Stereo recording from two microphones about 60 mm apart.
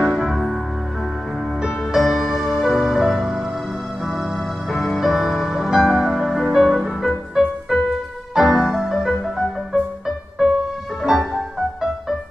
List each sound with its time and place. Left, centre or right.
0.0 s music: centre
2.0 s music: centre